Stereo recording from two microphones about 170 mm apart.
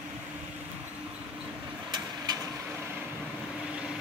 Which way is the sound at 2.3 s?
25° right (ahead or behind).